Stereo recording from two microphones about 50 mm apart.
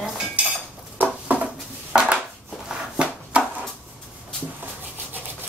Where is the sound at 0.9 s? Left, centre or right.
Right.